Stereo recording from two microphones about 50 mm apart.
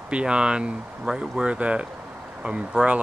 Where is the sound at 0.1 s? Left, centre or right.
Centre.